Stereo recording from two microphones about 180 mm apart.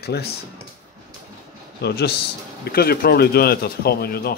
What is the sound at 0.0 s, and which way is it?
Speech, 65° left (ahead or behind).